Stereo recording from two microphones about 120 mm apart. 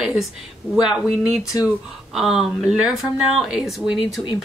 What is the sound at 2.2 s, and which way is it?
A woman's voice, 5° right (ahead or behind).